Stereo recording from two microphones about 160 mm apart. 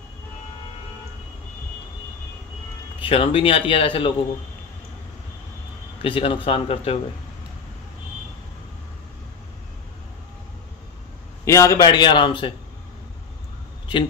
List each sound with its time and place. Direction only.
3.0 s speech: 35° left (ahead or behind)
6.0 s speech: 35° left (ahead or behind)
11.4 s a man's voice: 20° left (ahead or behind)